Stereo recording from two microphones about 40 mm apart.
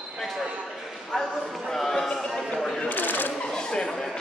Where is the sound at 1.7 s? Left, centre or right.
Centre.